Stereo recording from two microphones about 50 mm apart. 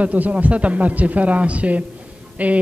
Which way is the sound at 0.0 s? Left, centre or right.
Right.